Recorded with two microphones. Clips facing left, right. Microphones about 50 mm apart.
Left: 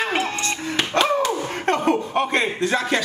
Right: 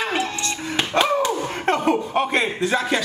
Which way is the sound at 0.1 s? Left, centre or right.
Left.